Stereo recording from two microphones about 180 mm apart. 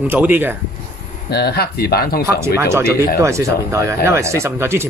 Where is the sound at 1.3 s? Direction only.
65° left (ahead or behind).